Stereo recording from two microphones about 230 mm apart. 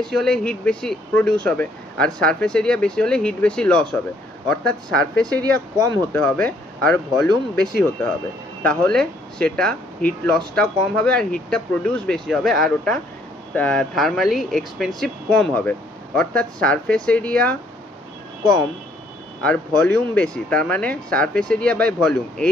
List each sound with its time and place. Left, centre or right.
0.1 s speech: centre
5.3 s speech: centre
6.1 s speech: centre
8.6 s speech: centre
19.4 s speech: centre